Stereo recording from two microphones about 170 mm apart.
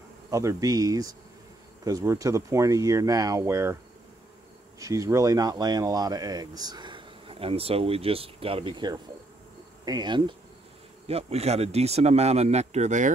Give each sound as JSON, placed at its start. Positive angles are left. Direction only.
{"t": 0.3, "sound": "speech", "side_deg": -20}
{"t": 4.7, "sound": "speech", "side_deg": -20}